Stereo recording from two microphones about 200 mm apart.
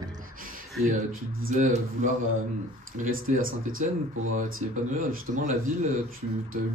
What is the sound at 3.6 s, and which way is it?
Speech, 90° right.